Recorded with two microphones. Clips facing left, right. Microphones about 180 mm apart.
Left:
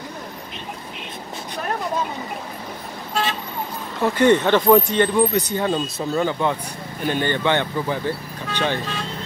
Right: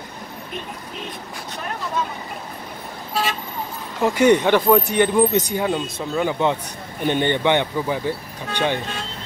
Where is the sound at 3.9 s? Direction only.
15° right (ahead or behind).